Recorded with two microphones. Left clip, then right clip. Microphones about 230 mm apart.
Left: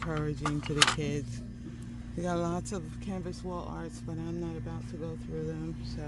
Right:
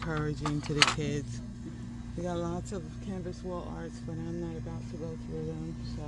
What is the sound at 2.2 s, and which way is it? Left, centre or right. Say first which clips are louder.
Speech: left 3 dB; left.